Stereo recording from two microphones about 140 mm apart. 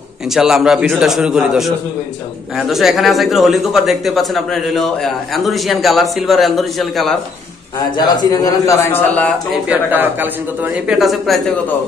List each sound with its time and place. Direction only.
0.3 s speech: 5° right (ahead or behind)
8.2 s a man's voice: 25° left (ahead or behind)
8.9 s a man's voice: 10° left (ahead or behind)
9.5 s a man's voice: 10° right (ahead or behind)